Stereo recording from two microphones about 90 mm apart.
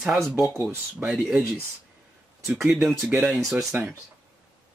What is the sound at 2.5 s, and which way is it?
Speech, 5° right (ahead or behind).